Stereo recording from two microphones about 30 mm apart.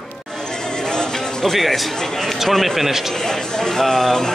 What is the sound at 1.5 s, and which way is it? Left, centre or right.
A man's voice, centre.